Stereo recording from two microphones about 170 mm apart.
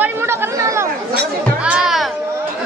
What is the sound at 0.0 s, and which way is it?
Chatter, 15° right (ahead or behind).